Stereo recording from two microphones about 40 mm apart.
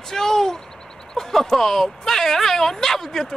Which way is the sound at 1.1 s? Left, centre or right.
Centre.